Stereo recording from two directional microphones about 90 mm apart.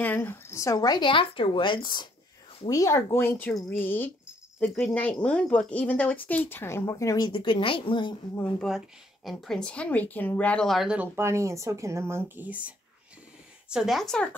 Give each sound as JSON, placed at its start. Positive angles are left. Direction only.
{"t": 0.0, "sound": "speech", "side_deg": 20}
{"t": 0.7, "sound": "a woman's voice", "side_deg": 50}
{"t": 1.1, "sound": "speech", "side_deg": 70}
{"t": 2.7, "sound": "speech", "side_deg": 35}
{"t": 4.6, "sound": "speech", "side_deg": 5}
{"t": 4.9, "sound": "speech", "side_deg": 15}
{"t": 7.2, "sound": "speech", "side_deg": 70}
{"t": 8.6, "sound": "speech", "side_deg": 0}
{"t": 11.0, "sound": "speech", "side_deg": -30}
{"t": 13.7, "sound": "speech", "side_deg": -5}